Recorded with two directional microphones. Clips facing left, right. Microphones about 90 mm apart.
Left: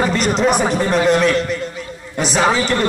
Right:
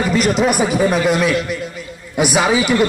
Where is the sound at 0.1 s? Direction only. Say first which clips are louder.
Even; 5° right (ahead or behind).